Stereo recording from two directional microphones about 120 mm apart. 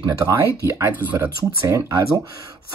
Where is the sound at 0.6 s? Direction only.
20° right (ahead or behind).